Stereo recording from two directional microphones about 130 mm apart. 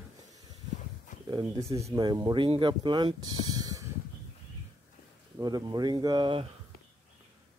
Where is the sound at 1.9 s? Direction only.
30° right (ahead or behind).